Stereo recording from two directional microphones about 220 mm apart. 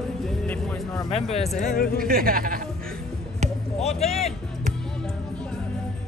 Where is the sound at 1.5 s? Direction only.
35° left (ahead or behind).